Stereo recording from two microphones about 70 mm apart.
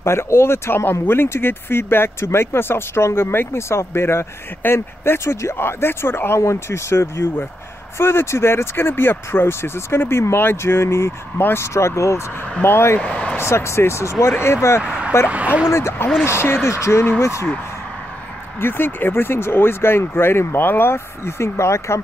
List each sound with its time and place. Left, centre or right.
0.0 s speech: left
12.6 s speech: left
13.0 s a sound: centre
13.4 s speech: left
14.8 s speech: centre
15.7 s speech: left
18.6 s speech: left